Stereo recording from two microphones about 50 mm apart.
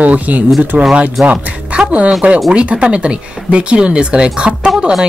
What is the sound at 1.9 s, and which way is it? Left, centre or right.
Speech, right.